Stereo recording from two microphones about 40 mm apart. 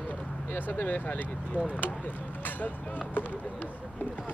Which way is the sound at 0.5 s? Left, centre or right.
Left.